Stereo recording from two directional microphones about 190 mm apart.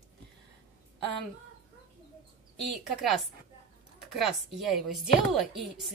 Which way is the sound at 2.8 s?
Centre (ahead or behind).